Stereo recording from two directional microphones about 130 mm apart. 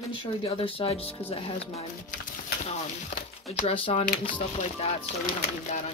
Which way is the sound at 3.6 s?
45° left (ahead or behind).